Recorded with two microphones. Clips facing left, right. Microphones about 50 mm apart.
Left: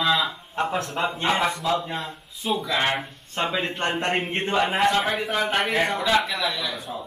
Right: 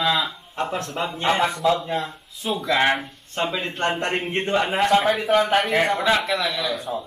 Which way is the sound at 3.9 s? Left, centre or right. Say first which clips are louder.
Right 1 dB; centre.